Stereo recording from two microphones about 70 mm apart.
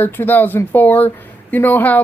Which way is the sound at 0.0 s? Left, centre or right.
Left.